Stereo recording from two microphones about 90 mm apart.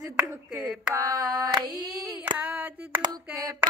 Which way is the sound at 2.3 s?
15° right (ahead or behind).